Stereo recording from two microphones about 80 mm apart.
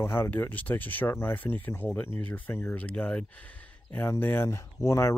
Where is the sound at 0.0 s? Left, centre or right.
Left.